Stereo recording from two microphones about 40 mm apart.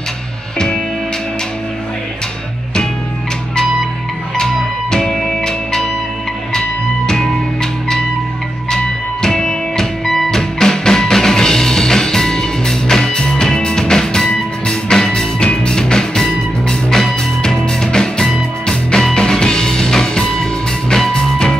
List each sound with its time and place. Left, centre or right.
4.9 s music: centre
8.6 s music: centre
10.0 s music: centre